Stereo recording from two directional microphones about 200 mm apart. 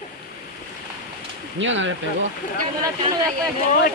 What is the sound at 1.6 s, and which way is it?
Speech, 70° right (ahead or behind).